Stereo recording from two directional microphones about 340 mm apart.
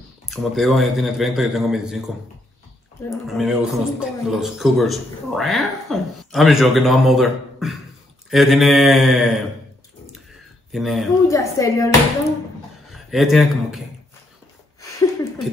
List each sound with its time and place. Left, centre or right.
0.3 s a man's voice: centre
3.1 s a man's voice: centre
10.7 s speech: centre
12.9 s speech: centre